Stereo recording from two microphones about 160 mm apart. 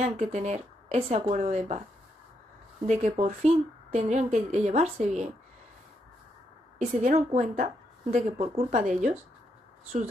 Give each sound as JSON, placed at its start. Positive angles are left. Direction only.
{"t": 0.0, "sound": "speech", "side_deg": -45}
{"t": 2.9, "sound": "speech", "side_deg": -45}
{"t": 6.8, "sound": "a woman's voice", "side_deg": -45}